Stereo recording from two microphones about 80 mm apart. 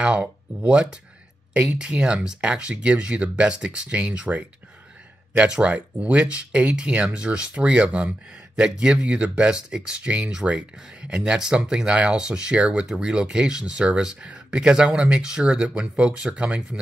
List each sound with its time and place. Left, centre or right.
0.0 s speech: centre